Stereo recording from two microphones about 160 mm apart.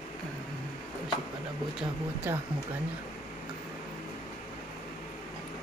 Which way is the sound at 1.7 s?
10° right (ahead or behind).